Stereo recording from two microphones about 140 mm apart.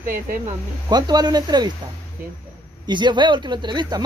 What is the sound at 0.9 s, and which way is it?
Speech, 30° right (ahead or behind).